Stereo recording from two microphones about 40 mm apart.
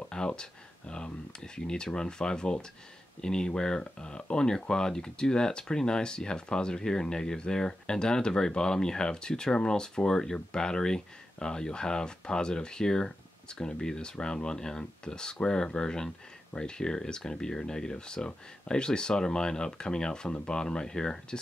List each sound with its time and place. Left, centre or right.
0.4 s speech: left